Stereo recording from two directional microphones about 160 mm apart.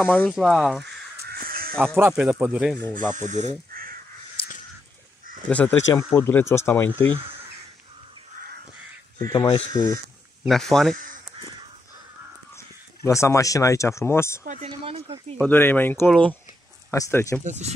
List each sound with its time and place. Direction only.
0.0 s speech: centre (ahead or behind)
1.2 s caw: 65° right (ahead or behind)
2.0 s speech: 10° right (ahead or behind)
3.2 s speech: 50° right (ahead or behind)
5.5 s speech: 10° left (ahead or behind)
9.2 s speech: 20° left (ahead or behind)
10.4 s speech: centre (ahead or behind)
12.5 s speech: 20° left (ahead or behind)
14.6 s speech: 40° right (ahead or behind)
15.4 s speech: 10° left (ahead or behind)
16.9 s speech: 20° left (ahead or behind)
17.4 s speech: 45° right (ahead or behind)